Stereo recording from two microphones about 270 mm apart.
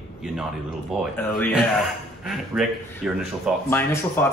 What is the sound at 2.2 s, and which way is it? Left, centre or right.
Speech, centre.